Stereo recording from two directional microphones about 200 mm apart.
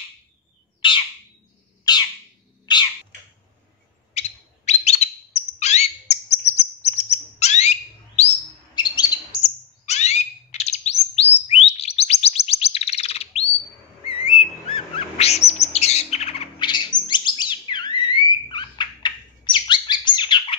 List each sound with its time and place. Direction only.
0.7 s bird: 25° left (ahead or behind)
1.9 s squawk: 20° left (ahead or behind)
2.6 s cat: 20° left (ahead or behind)
4.1 s bird: 35° left (ahead or behind)
8.2 s chirp: 35° left (ahead or behind)
8.7 s chirp: 20° left (ahead or behind)
9.8 s bird: 35° left (ahead or behind)